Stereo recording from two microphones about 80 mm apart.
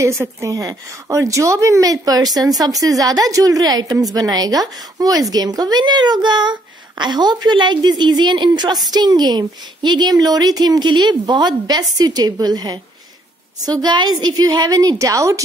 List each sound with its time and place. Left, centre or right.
0.0 s a woman's voice: right